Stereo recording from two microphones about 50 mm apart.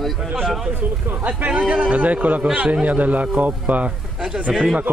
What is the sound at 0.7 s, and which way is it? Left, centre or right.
Speech, right.